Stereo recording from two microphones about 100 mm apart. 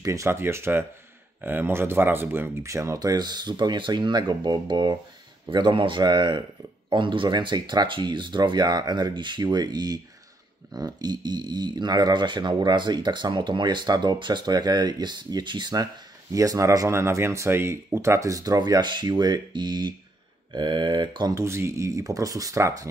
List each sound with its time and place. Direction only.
0.0 s speech: 30° right (ahead or behind); by 21.3 s 50° right (ahead or behind)
21.3 s speech: 25° right (ahead or behind)